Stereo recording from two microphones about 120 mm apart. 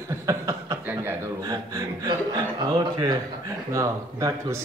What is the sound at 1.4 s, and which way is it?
Chuckle, 30° right (ahead or behind).